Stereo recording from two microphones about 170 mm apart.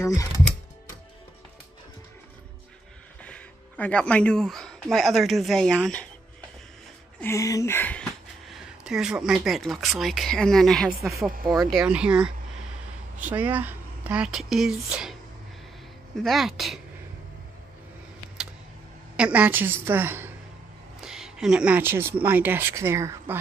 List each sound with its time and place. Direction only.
0.0 s speech: 20° left (ahead or behind)
3.2 s speech: 10° left (ahead or behind)
7.2 s speech: 15° left (ahead or behind)
11.1 s a woman's voice: 15° right (ahead or behind)
11.7 s speech: 5° right (ahead or behind)
16.2 s speech: centre (ahead or behind)
19.1 s a woman's voice: 10° right (ahead or behind)